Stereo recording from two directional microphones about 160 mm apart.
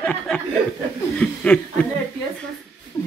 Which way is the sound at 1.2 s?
5° left (ahead or behind).